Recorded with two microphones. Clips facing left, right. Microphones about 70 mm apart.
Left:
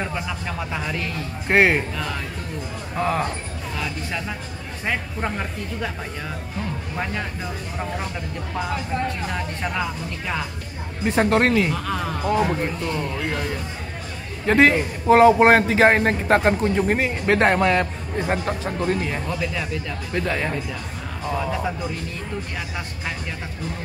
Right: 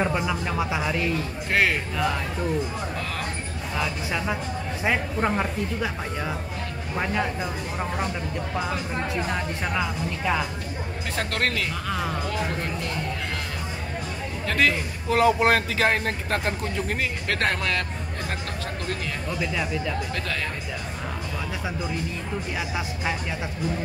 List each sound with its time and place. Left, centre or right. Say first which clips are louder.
0.0 s speech: right 3 dB; centre
1.5 s speech: left 6 dB; left
3.7 s speech: right 2 dB; centre
8.5 s speech: left 4 dB; centre
11.1 s speech: left 9 dB; left
11.7 s speech: left 3 dB; centre
14.4 s a man's voice: left 7 dB; left
19.2 s speech: left 1 dB; centre
20.2 s speech: left 6 dB; left